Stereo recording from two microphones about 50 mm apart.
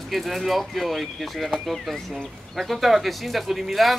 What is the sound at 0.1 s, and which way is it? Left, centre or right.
Speech, centre.